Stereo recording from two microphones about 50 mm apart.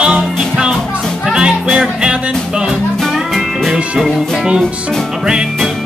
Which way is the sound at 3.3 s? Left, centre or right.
Centre.